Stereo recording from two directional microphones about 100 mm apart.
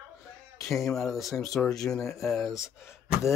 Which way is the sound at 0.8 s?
Centre (ahead or behind).